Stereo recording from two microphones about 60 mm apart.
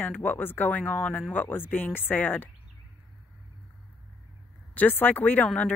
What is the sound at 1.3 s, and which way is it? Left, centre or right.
A woman's voice, left.